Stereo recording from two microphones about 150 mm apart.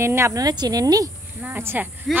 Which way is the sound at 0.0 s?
20° right (ahead or behind).